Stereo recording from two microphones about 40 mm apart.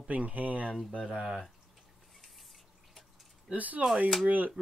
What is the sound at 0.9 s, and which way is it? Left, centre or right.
Speech, right.